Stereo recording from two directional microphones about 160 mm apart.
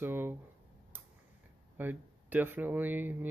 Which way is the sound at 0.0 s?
15° right (ahead or behind).